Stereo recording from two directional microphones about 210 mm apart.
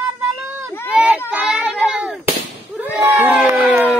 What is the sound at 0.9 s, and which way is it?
Child singing, 5° right (ahead or behind).